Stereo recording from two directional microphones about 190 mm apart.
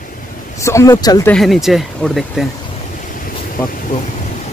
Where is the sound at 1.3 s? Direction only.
Centre (ahead or behind).